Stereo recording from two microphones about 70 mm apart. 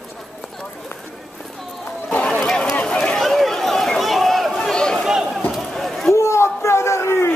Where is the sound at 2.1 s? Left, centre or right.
Centre.